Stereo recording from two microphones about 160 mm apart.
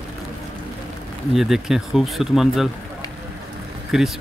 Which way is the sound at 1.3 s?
Centre (ahead or behind).